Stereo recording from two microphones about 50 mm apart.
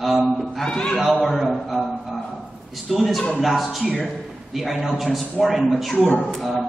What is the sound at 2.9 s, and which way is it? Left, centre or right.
A man's voice, centre.